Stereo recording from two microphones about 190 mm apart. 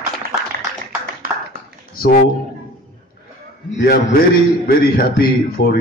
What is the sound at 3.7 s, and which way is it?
A man's voice, 55° left (ahead or behind).